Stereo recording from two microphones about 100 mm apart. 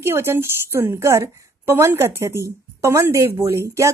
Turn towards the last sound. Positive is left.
turn(degrees=-30)  # may be behind; listen again after turning